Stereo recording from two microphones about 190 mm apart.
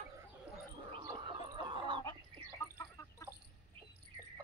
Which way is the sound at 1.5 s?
25° right (ahead or behind).